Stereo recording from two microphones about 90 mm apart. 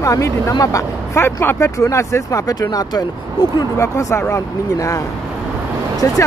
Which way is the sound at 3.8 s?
30° left (ahead or behind).